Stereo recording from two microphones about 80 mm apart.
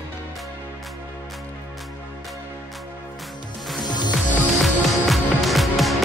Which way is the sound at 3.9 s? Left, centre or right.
Left.